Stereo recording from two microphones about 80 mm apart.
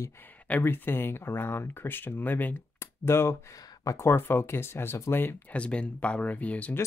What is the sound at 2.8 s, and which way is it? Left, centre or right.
Speech, left.